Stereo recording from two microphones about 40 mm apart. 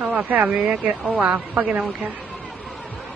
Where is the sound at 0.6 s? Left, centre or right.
Right.